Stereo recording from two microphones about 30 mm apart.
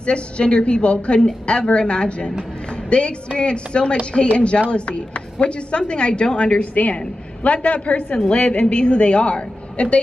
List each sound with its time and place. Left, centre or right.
0.0 s a woman's voice: left
6.7 s a woman's voice: left